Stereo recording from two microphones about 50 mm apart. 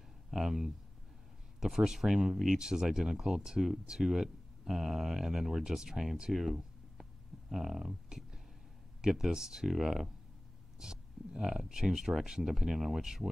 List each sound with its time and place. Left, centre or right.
0.3 s speech: centre
6.3 s a sound: centre
8.1 s speech: centre